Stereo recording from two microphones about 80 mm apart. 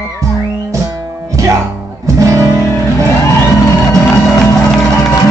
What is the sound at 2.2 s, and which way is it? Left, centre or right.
Music, right.